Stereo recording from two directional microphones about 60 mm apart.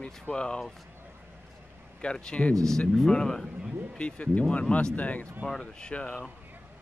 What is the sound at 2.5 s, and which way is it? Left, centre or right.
Speech, centre.